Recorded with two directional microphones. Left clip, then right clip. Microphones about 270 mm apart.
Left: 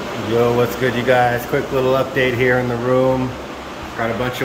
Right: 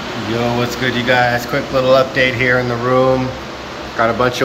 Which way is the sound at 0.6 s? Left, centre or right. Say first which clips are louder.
Even; centre.